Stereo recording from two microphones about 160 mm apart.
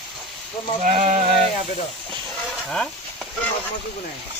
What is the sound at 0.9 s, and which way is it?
Sheep, 40° right (ahead or behind).